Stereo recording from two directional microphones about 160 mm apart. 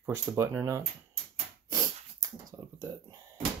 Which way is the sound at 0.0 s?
15° right (ahead or behind).